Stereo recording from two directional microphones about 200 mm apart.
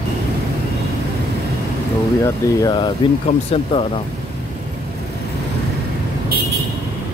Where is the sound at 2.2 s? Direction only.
20° left (ahead or behind).